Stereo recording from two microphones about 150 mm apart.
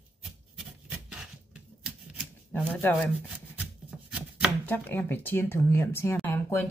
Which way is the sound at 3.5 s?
5° right (ahead or behind).